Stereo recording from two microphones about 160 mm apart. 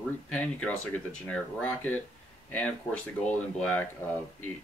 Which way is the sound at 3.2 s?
10° left (ahead or behind).